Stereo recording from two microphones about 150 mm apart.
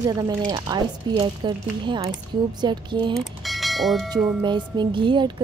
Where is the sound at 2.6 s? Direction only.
30° right (ahead or behind).